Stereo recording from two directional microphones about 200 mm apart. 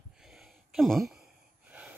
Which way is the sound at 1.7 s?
5° right (ahead or behind).